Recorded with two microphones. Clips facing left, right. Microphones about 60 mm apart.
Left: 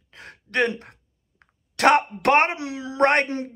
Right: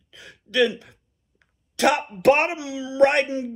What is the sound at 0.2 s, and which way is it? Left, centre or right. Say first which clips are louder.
Throat clearing: right 2 dB; left.